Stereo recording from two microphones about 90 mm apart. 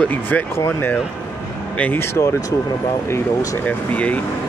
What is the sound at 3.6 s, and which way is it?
Speech, 15° left (ahead or behind).